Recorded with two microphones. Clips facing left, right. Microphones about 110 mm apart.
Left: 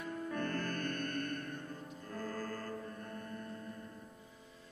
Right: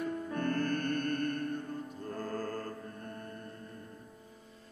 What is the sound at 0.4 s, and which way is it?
Music, 40° right (ahead or behind).